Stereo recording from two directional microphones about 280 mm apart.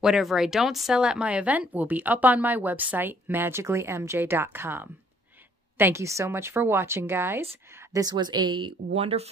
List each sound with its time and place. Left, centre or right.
0.0 s speech: centre; by 9.3 s right